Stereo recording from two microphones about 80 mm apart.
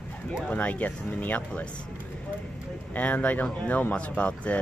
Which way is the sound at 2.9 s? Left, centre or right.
Centre.